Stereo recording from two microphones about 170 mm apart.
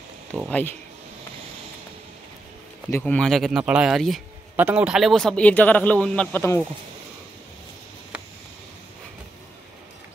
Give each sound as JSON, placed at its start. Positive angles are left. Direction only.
{"t": 0.5, "sound": "speech", "side_deg": 10}
{"t": 2.9, "sound": "speech", "side_deg": 10}